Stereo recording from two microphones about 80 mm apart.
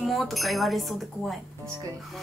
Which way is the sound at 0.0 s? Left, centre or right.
Centre.